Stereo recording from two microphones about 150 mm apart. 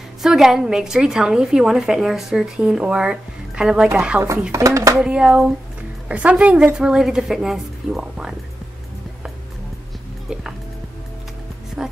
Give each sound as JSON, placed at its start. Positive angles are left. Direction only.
{"t": 0.2, "sound": "a woman's voice", "side_deg": 0}
{"t": 4.2, "sound": "speech", "side_deg": -20}
{"t": 4.9, "sound": "a woman's voice", "side_deg": -5}
{"t": 11.8, "sound": "a sound", "side_deg": -5}